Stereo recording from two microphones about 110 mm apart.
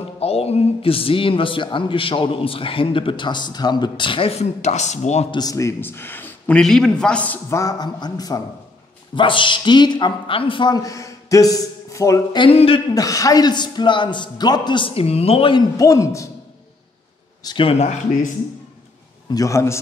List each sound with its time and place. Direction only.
0.2 s a man's voice: 65° left (ahead or behind); by 5.3 s 90° left
5.3 s a man's voice: 35° left (ahead or behind); by 6.6 s 15° left (ahead or behind)
6.6 s a man's voice: 5° left (ahead or behind)
7.4 s speech: 30° left (ahead or behind)
9.1 s speech: 50° left (ahead or behind); by 12.4 s 30° left (ahead or behind)
12.4 s speech: 60° left (ahead or behind)
12.9 s a man's voice: 30° left (ahead or behind); by 15.5 s 65° left (ahead or behind)
15.8 s a man's voice: 30° left (ahead or behind)
17.4 s speech: 35° left (ahead or behind)
17.7 s speech: 90° left
19.3 s a man's voice: 30° left (ahead or behind)